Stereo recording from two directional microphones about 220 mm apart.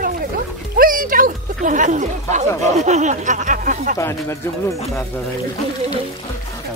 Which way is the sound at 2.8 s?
30° right (ahead or behind).